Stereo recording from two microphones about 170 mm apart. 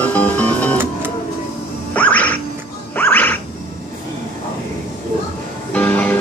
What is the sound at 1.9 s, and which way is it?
Music, 10° left (ahead or behind).